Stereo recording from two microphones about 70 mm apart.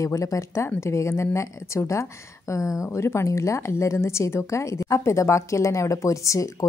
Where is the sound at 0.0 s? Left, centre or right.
Left.